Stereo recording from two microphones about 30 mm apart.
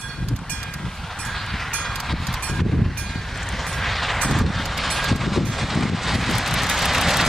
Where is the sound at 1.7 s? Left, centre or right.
Centre.